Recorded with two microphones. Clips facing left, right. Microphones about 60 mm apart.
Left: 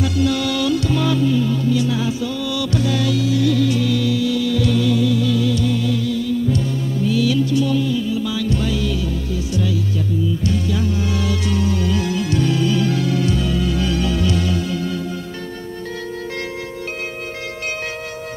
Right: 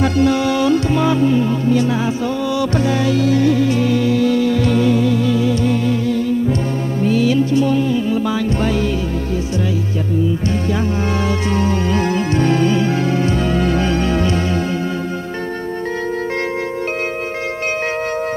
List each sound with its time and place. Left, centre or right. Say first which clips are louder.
0.0 s music: right 4 dB; right
10.4 s music: right 2 dB; right